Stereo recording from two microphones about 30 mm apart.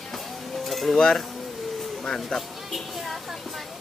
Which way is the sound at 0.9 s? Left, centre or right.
Centre.